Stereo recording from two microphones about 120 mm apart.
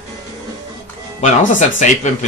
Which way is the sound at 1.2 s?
85° left.